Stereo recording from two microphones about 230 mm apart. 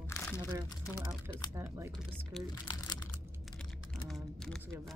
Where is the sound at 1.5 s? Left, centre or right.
Centre.